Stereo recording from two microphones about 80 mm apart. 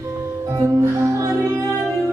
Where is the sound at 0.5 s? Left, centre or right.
Right.